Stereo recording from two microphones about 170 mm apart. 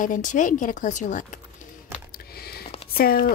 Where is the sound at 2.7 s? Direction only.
35° left (ahead or behind).